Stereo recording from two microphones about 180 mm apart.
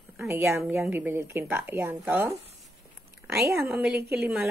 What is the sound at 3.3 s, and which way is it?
Speech, 15° right (ahead or behind).